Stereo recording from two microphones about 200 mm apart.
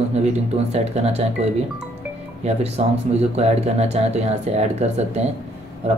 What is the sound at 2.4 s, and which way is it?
Speech, 30° right (ahead or behind).